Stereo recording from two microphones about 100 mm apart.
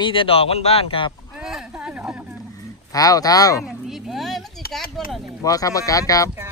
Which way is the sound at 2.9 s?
35° left (ahead or behind).